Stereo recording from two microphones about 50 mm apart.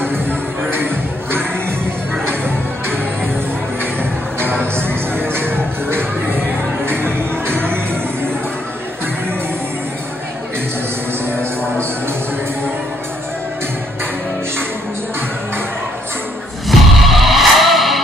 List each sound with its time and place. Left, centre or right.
0.1 s music: right
2.2 s music: right
16.6 s music: centre